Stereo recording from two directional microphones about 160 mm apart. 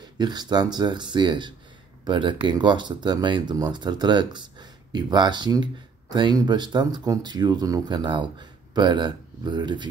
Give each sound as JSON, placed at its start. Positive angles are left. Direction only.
{"t": 0.2, "sound": "speech", "side_deg": -25}